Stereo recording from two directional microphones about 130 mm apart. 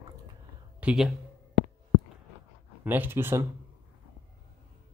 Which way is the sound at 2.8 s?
15° right (ahead or behind).